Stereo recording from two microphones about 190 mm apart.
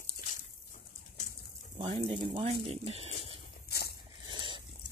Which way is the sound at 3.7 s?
55° left (ahead or behind).